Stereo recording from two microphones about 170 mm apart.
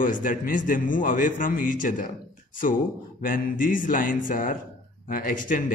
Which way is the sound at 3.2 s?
55° left (ahead or behind).